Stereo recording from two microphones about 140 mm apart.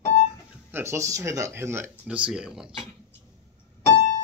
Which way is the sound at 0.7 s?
20° right (ahead or behind).